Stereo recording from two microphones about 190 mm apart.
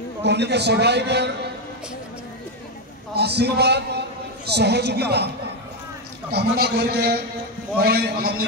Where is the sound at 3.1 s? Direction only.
60° right (ahead or behind).